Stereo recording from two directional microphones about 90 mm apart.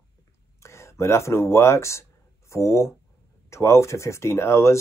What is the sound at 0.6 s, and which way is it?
Speech, 30° left (ahead or behind).